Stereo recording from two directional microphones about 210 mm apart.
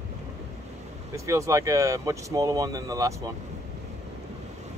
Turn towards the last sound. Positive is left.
turn(degrees=-15)  # may be behind; listen again after turning